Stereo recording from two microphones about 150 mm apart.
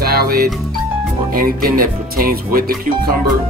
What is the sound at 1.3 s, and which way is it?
Speech, 75° right (ahead or behind).